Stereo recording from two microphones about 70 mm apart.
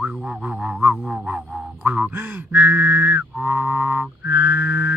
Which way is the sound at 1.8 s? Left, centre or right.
Right.